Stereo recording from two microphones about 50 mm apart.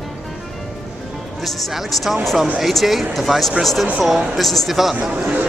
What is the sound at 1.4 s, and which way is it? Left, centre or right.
Speech, centre.